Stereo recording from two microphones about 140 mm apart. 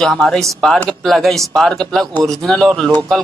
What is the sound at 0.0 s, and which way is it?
Speech, 5° left (ahead or behind).